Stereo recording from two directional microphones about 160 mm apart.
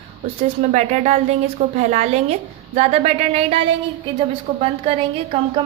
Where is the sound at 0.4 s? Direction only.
50° right (ahead or behind).